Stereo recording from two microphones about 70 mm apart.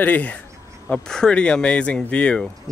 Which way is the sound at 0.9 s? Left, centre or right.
Centre.